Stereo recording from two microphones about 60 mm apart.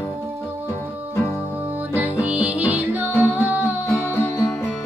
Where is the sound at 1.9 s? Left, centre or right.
Right.